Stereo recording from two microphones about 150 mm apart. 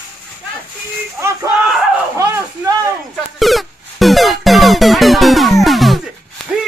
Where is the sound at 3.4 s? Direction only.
Centre (ahead or behind).